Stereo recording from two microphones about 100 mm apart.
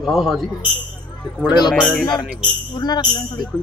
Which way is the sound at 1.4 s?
45° left (ahead or behind).